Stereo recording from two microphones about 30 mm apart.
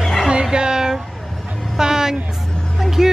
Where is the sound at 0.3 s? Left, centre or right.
Right.